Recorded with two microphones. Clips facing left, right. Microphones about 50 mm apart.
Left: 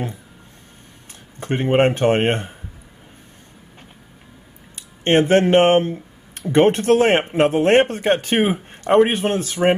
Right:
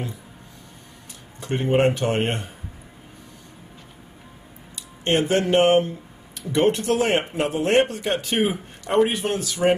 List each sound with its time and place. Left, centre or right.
1.4 s speech: left
4.7 s speech: left